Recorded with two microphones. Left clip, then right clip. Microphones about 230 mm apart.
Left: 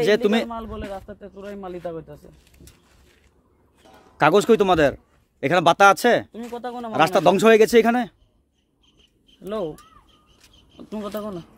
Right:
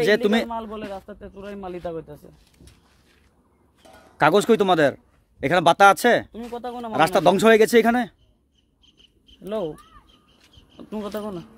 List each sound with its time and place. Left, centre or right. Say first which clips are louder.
0.0 s a man's voice: even; centre
4.2 s a man's voice: left 1 dB; centre
8.8 s squawk: right 3 dB; right
9.4 s a man's voice: even; centre
10.8 s a man's voice: even; centre